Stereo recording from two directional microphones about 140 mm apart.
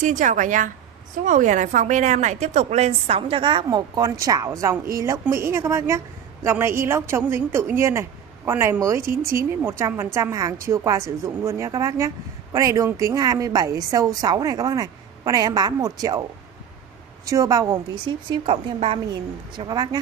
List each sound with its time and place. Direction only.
0.0 s a woman's voice: 65° right (ahead or behind); by 16.3 s 25° right (ahead or behind)
17.3 s a woman's voice: 25° right (ahead or behind); by 18.9 s 40° right (ahead or behind)
19.5 s speech: 30° right (ahead or behind)